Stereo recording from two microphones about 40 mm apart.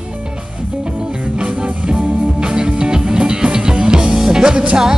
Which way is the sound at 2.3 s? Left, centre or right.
Right.